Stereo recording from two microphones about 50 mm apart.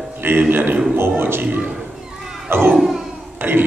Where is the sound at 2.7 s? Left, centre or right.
Centre.